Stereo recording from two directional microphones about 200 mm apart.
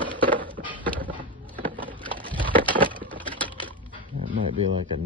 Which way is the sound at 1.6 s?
10° left (ahead or behind).